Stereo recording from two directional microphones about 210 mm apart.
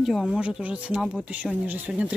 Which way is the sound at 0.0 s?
Centre (ahead or behind).